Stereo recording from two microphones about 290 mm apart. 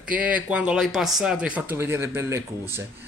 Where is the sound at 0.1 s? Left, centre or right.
Centre.